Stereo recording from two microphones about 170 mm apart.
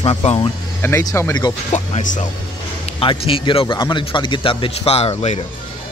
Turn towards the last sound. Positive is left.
turn(degrees=40)  # may be behind; listen again after turning